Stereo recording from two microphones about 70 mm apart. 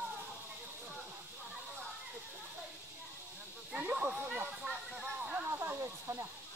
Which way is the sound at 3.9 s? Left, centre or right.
Centre.